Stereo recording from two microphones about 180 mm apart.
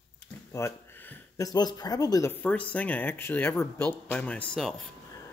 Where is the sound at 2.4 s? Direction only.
5° left (ahead or behind).